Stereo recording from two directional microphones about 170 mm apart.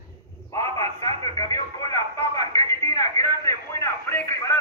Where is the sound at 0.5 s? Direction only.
20° left (ahead or behind).